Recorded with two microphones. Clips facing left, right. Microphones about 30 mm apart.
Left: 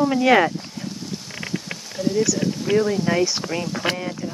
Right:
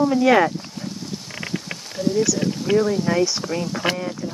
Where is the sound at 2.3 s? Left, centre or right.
Centre.